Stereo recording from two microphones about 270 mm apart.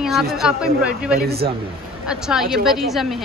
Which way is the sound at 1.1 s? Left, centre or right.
Right.